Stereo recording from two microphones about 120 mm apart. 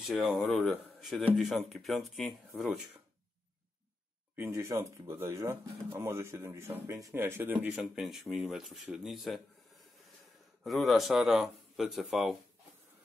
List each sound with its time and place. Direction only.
0.0 s a man's voice: centre (ahead or behind)
4.4 s speech: 25° right (ahead or behind)
7.7 s a man's voice: 5° right (ahead or behind)
10.6 s a man's voice: centre (ahead or behind)